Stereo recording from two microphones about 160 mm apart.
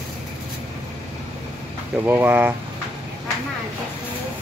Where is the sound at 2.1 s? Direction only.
10° right (ahead or behind).